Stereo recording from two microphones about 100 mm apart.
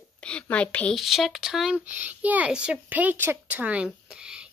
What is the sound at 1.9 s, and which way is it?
A woman's voice, 15° right (ahead or behind).